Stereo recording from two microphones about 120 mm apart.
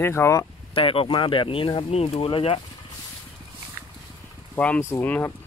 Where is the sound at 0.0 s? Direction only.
20° left (ahead or behind).